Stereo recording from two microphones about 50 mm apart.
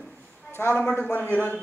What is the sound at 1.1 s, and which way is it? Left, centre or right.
Speech, left.